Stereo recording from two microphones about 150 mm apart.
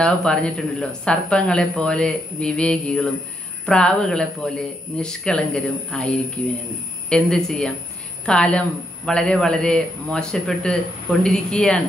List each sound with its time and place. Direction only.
0.0 s speech: 5° left (ahead or behind)